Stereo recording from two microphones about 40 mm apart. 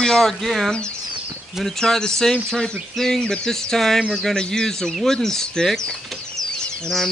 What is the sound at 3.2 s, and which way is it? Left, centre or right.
Speech, left.